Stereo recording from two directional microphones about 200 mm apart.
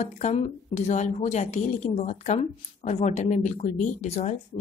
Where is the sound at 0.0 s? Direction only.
35° left (ahead or behind).